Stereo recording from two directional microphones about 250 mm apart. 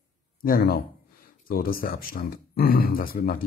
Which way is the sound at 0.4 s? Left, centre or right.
Left.